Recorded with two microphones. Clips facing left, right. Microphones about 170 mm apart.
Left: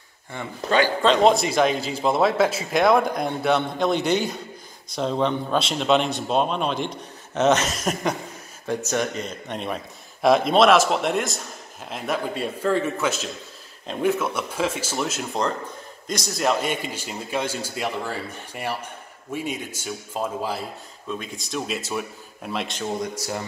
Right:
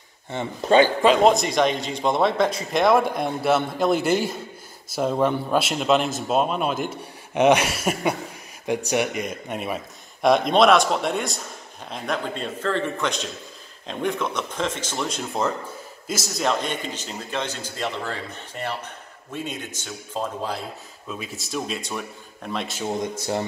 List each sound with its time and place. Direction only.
0.3 s speech: 25° right (ahead or behind)
1.0 s a man's voice: centre (ahead or behind)
21.1 s a man's voice: 5° right (ahead or behind)